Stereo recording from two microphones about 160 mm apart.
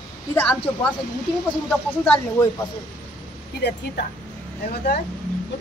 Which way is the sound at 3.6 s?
90° left.